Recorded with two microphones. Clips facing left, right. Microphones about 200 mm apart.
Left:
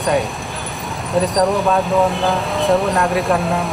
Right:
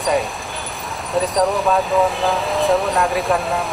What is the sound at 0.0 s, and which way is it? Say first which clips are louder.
A woman's voice: left 1 dB; centre (ahead or behind).